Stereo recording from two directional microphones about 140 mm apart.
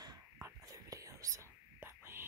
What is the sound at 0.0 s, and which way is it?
Whispering, 25° right (ahead or behind).